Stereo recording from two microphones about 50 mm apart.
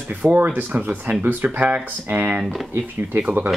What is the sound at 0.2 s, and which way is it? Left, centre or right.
Speech, right.